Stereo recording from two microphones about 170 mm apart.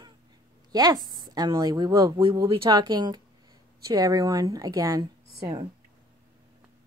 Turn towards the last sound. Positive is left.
turn(degrees=-25)  # may be behind; listen again after turning